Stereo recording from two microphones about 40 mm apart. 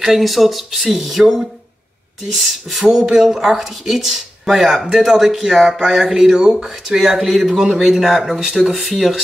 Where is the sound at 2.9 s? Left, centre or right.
Centre.